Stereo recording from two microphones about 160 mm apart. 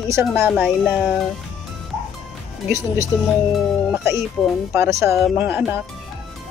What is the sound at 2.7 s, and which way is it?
Speech, 20° right (ahead or behind).